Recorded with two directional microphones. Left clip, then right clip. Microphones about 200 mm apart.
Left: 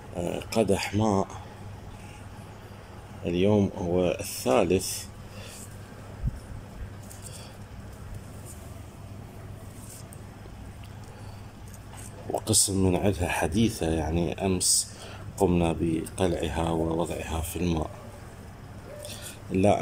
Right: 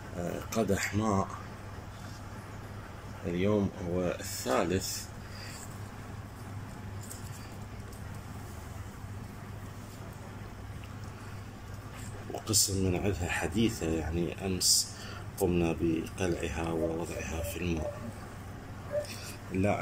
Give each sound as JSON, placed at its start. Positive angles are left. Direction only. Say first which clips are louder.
{"t": 0.5, "sound": "speech", "louder": "left 6 dB", "side_deg": 10}
{"t": 3.3, "sound": "speech", "louder": "left 6 dB", "side_deg": 10}
{"t": 12.4, "sound": "speech", "louder": "left 4 dB", "side_deg": 20}
{"t": 19.0, "sound": "a sound", "louder": "left 3 dB", "side_deg": 20}